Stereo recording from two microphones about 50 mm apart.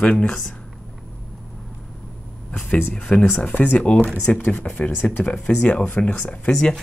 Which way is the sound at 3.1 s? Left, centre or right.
Left.